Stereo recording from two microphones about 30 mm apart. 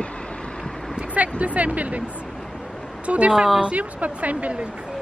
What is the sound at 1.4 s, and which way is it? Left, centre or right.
Speech, right.